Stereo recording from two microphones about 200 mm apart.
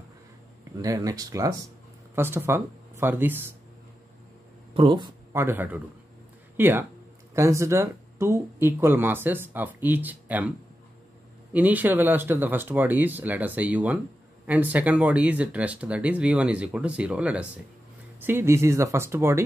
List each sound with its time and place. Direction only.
0.8 s speech: 15° right (ahead or behind)
4.7 s speech: 25° right (ahead or behind)
5.3 s speech: 10° right (ahead or behind)
11.5 s speech: 10° right (ahead or behind)